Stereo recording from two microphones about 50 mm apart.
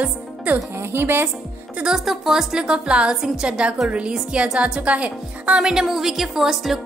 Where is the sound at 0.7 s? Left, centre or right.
Right.